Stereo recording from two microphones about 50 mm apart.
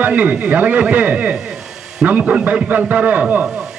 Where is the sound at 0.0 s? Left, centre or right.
Right.